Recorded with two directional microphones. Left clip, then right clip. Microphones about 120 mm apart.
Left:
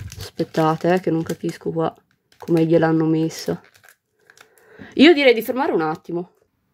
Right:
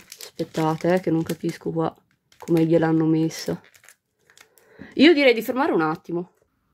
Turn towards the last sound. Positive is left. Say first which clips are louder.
# left 1 dB
turn(degrees=0)  # may be behind; listen again after turning